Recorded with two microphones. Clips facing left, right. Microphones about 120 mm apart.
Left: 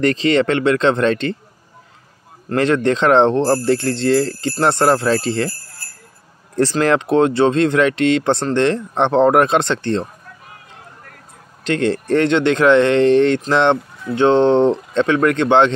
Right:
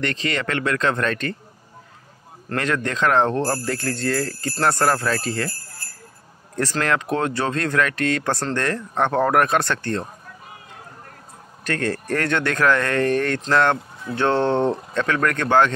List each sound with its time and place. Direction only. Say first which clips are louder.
0.0 s speech: left 10 dB; 30° left (ahead or behind)
2.5 s speech: left 8 dB; 30° left (ahead or behind)
6.5 s speech: left 7 dB; 30° left (ahead or behind)
11.6 s speech: left 6 dB; 20° left (ahead or behind)